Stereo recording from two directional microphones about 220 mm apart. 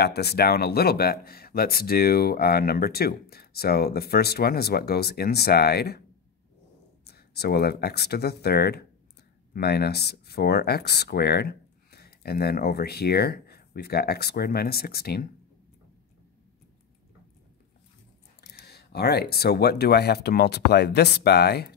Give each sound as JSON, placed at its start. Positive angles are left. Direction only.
{"t": 0.0, "sound": "speech", "side_deg": 45}
{"t": 7.1, "sound": "speech", "side_deg": 45}
{"t": 18.5, "sound": "speech", "side_deg": 45}